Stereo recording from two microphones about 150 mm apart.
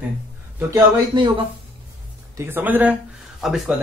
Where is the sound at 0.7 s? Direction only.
30° right (ahead or behind).